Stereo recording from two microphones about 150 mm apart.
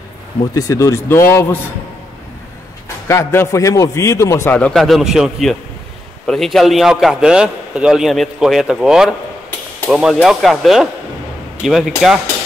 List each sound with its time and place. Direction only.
0.6 s a man's voice: 20° left (ahead or behind)
3.1 s a man's voice: 20° left (ahead or behind); by 11.9 s centre (ahead or behind)